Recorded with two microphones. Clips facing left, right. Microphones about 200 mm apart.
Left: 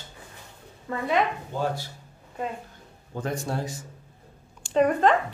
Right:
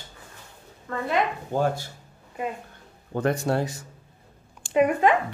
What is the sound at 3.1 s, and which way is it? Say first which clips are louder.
Speech: right 6 dB; 65° right (ahead or behind).